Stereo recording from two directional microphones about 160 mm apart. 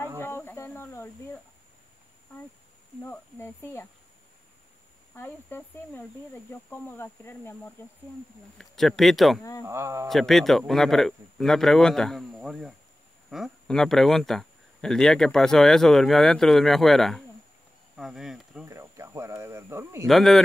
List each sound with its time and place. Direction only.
0.2 s a sound: 15° left (ahead or behind)
3.0 s speech: 15° left (ahead or behind)
5.1 s speech: 15° left (ahead or behind)
8.5 s speech: centre (ahead or behind)
9.7 s a man's voice: 20° right (ahead or behind)
10.0 s speech: centre (ahead or behind)
18.7 s a sound: 20° right (ahead or behind)
20.1 s speech: centre (ahead or behind)